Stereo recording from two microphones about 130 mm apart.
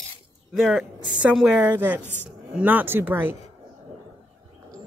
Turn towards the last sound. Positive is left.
turn(degrees=-15)  # may be behind; listen again after turning